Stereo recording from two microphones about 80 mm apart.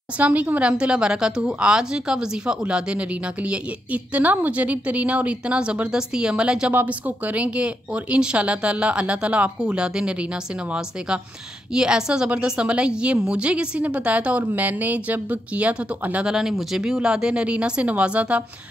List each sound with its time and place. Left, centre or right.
0.2 s a woman's voice: centre
6.7 s a woman's voice: right
16.3 s a woman's voice: centre